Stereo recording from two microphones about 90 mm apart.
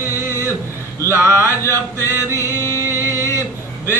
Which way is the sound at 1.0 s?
30° right (ahead or behind).